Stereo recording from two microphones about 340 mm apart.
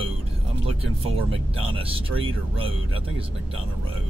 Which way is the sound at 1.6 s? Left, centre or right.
Centre.